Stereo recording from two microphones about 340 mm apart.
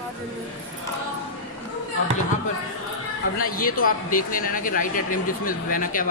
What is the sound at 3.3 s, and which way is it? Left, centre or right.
A man's voice, left.